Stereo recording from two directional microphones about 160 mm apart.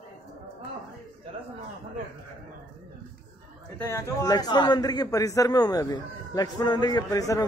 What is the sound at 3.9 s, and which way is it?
A man's voice, 20° left (ahead or behind).